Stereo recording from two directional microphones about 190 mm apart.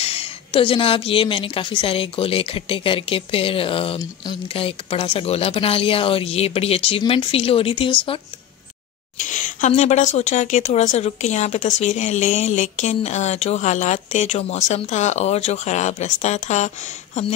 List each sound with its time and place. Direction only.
0.0 s speech: 30° left (ahead or behind)
9.2 s a sound: 40° left (ahead or behind)
10.1 s speech: 40° left (ahead or behind)